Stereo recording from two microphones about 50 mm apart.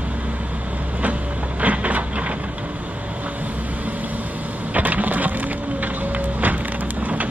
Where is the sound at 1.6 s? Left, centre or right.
Right.